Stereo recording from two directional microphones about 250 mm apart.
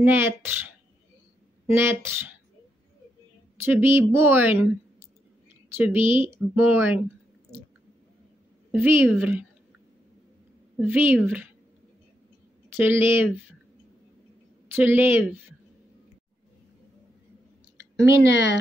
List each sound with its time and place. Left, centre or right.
0.0 s speech: centre
3.6 s speech: centre
5.8 s speech: centre
8.7 s speech: centre
10.8 s speech: centre
12.6 s speech: centre
14.8 s speech: centre
18.3 s speech: left